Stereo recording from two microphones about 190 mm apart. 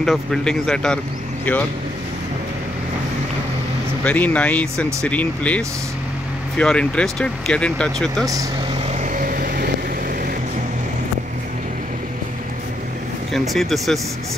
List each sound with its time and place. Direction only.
0.0 s speech: centre (ahead or behind)
4.0 s speech: 5° left (ahead or behind)
9.0 s vehicle: 45° right (ahead or behind)
13.3 s speech: centre (ahead or behind)